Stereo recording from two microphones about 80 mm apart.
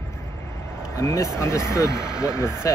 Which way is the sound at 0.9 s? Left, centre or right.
Left.